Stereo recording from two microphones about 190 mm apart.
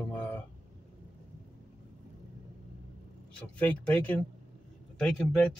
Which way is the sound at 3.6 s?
10° left (ahead or behind).